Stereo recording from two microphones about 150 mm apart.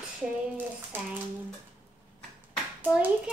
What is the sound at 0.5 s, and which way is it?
Speech, 10° right (ahead or behind).